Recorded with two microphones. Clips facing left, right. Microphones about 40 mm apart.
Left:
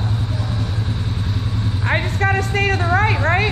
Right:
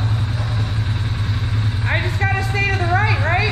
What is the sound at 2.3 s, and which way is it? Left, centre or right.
Vehicle, left.